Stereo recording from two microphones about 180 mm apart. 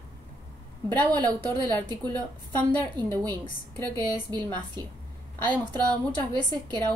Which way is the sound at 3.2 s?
20° right (ahead or behind).